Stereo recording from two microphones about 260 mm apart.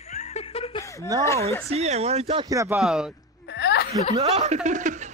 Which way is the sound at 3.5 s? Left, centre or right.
Left.